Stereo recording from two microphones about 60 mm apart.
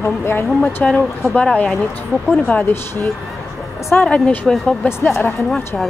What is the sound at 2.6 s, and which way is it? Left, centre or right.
Speech, left.